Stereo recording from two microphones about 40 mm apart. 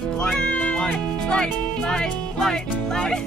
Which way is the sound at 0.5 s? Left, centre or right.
Left.